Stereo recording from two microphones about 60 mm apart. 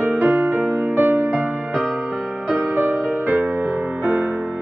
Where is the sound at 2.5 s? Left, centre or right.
Right.